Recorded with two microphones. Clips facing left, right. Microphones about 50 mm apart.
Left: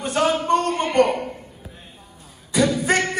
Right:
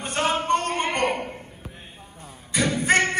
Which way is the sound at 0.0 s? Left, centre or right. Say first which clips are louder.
Left 4 dB; right.